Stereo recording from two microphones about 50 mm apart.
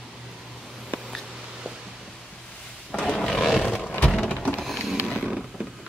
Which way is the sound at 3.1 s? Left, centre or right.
Centre.